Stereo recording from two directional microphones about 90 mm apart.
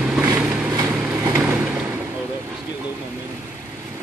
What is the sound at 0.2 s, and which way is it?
Vehicle, 20° right (ahead or behind).